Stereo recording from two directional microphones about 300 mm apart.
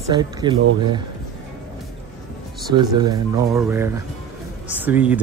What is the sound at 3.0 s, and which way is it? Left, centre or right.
Speech, centre.